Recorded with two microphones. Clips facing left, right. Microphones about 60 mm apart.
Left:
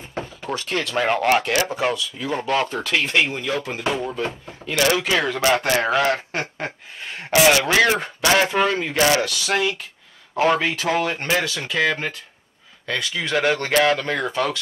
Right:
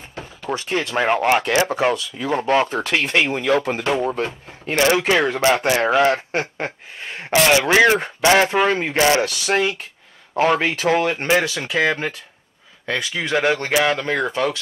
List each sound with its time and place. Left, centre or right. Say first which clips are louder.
0.5 s speech: right 3 dB; centre
1.4 s speech: right 3 dB; right
5.7 s speech: right 3 dB; centre
10.9 s speech: right 5 dB; centre